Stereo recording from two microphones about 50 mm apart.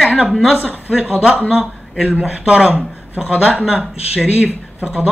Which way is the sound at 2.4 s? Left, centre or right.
Centre.